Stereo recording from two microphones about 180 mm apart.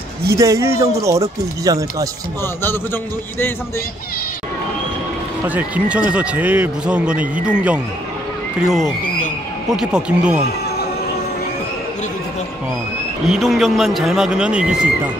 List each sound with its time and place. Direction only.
0.4 s a man's voice: 15° right (ahead or behind)
2.4 s a man's voice: 10° left (ahead or behind)
5.5 s a man's voice: 10° right (ahead or behind)
13.3 s speech: centre (ahead or behind)